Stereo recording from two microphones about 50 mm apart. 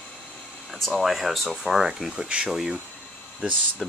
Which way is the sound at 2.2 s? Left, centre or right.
Right.